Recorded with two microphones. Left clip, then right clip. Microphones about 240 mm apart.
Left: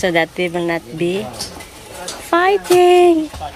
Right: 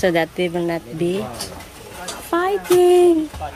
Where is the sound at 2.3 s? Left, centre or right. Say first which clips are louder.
Left 6 dB; centre.